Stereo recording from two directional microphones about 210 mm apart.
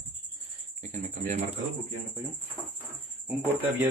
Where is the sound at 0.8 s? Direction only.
35° right (ahead or behind).